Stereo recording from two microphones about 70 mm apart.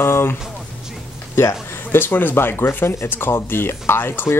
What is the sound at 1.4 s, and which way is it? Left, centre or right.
Speech, left.